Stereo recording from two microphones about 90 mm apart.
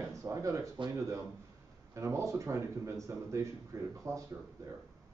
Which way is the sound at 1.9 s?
35° right (ahead or behind).